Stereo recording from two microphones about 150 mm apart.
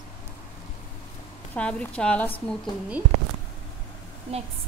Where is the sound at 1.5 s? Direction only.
10° left (ahead or behind).